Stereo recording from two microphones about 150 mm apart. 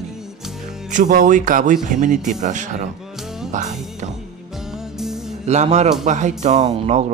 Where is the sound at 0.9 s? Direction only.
60° right (ahead or behind).